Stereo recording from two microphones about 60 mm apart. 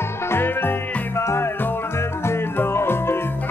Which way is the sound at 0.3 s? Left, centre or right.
Left.